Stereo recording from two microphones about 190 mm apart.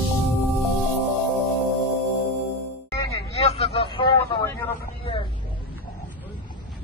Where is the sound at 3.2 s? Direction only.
30° left (ahead or behind).